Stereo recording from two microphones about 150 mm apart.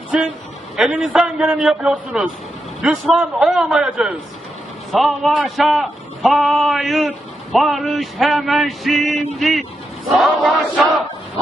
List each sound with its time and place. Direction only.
0.7 s a man's voice: 5° right (ahead or behind)